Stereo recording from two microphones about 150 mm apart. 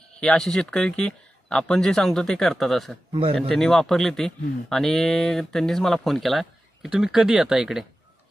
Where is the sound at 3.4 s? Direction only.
Centre (ahead or behind).